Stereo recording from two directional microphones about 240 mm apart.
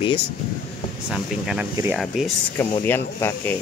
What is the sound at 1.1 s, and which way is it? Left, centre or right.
Speech, centre.